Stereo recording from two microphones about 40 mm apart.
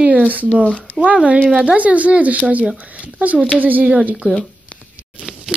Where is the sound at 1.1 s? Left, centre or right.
Right.